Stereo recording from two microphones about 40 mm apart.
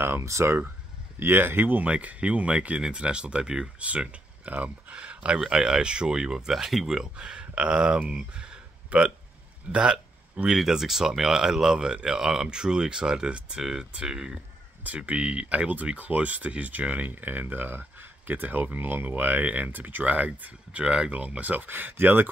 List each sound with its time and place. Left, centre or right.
0.0 s speech: right
1.2 s speech: right
1.9 s speech: right
3.8 s speech: right
4.9 s speech: right
5.4 s speech: centre
7.2 s speech: right
8.1 s a sound: right
10.5 s speech: centre; by 21.3 s right
21.4 s speech: right